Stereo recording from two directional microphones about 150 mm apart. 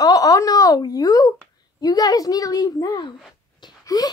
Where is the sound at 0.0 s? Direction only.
25° left (ahead or behind).